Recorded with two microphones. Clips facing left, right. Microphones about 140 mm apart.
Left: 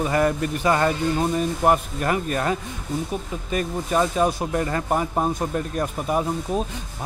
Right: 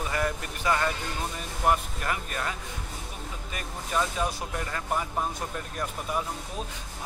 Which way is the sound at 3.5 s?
50° left (ahead or behind).